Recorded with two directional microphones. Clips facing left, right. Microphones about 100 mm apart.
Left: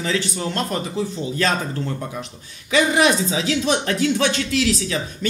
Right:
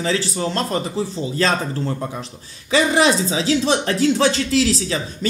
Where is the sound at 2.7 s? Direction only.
30° right (ahead or behind).